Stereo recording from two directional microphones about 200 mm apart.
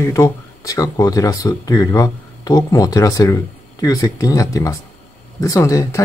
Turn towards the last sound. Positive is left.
turn(degrees=15)  # may be behind; listen again after turning